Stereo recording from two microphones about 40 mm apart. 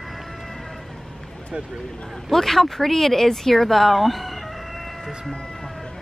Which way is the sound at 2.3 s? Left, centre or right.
Centre.